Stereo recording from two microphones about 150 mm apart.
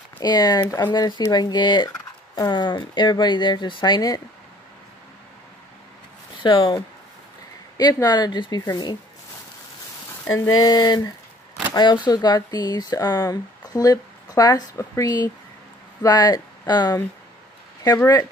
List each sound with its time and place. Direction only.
0.2 s speech: 25° left (ahead or behind)
6.4 s speech: 30° left (ahead or behind)
10.2 s speech: 20° left (ahead or behind)